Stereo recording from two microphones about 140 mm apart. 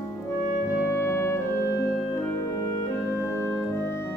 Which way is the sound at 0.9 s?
20° left (ahead or behind).